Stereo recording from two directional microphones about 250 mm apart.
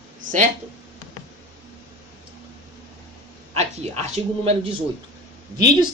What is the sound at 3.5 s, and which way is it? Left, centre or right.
A woman's voice, right.